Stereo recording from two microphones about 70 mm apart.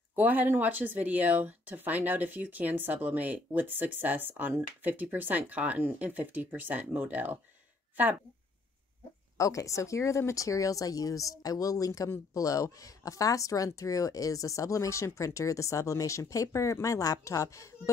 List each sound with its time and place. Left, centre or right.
0.1 s speech: right
9.4 s speech: left